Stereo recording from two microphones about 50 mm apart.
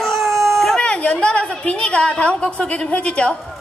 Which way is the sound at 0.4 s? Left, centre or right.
Centre.